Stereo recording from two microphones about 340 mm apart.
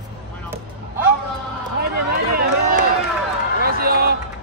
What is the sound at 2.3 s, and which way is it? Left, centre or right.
Run, right.